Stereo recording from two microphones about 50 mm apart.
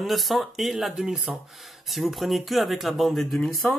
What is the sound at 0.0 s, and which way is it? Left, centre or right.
Speech, centre.